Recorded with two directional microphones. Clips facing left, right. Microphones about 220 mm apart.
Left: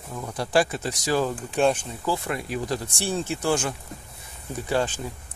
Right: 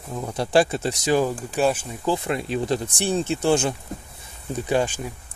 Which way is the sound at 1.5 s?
5° right (ahead or behind).